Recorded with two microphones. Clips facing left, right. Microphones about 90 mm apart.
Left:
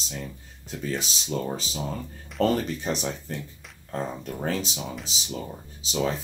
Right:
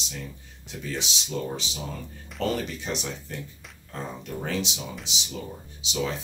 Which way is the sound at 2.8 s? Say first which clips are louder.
Left 3 dB; 40° left (ahead or behind).